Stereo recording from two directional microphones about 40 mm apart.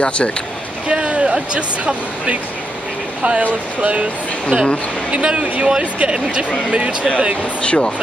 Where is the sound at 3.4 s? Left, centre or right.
Right.